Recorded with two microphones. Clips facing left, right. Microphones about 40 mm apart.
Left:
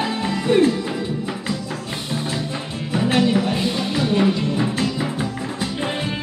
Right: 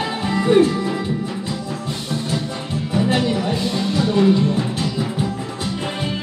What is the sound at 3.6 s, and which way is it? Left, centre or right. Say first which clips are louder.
Music: right 1 dB; centre.